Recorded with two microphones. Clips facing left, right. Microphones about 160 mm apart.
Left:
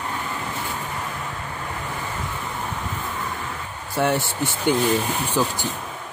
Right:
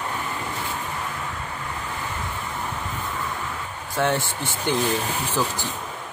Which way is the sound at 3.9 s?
10° left (ahead or behind).